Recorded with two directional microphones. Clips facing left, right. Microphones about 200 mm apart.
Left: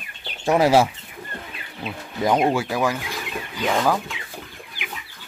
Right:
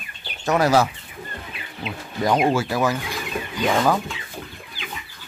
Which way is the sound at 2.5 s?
15° left (ahead or behind).